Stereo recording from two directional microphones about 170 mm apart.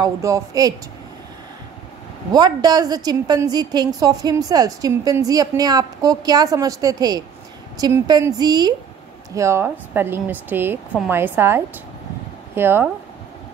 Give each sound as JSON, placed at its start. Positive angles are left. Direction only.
{"t": 0.0, "sound": "a woman's voice", "side_deg": -20}
{"t": 2.3, "sound": "a woman's voice", "side_deg": -25}